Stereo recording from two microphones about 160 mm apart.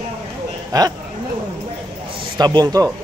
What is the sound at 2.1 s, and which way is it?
Speech, 30° right (ahead or behind).